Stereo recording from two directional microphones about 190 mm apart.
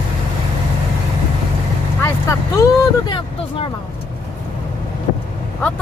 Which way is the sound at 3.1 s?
30° left (ahead or behind).